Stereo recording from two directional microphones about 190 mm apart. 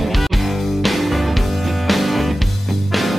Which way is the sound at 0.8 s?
Centre (ahead or behind).